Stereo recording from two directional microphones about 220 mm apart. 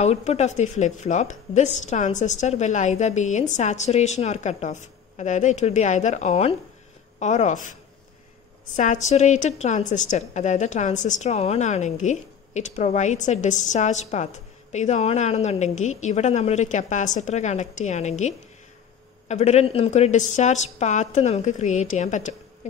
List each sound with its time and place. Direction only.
0.0 s a woman's voice: 30° left (ahead or behind)
8.7 s a woman's voice: 35° left (ahead or behind)
19.2 s a woman's voice: 30° left (ahead or behind)